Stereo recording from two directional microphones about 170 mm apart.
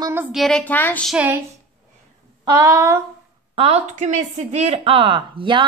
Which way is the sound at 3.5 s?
40° right (ahead or behind).